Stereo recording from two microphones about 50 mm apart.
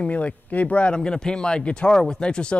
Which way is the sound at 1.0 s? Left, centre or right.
Centre.